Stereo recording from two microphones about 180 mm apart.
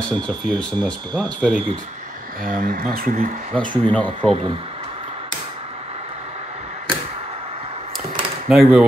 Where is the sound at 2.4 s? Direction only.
50° right (ahead or behind).